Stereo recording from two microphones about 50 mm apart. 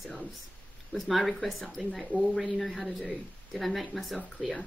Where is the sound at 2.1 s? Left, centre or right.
Left.